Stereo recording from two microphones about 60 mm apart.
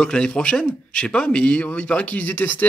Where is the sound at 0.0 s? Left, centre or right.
Centre.